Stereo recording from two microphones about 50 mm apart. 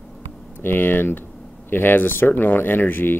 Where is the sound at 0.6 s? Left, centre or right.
Left.